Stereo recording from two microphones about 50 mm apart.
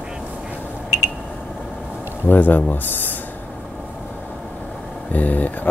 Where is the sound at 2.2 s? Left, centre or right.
Left.